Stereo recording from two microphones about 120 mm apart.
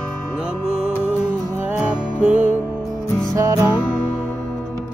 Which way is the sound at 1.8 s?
10° right (ahead or behind).